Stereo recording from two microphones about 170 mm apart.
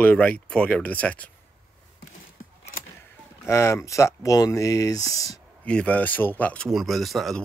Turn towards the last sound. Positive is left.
turn(degrees=0)  # may be behind; listen again after turning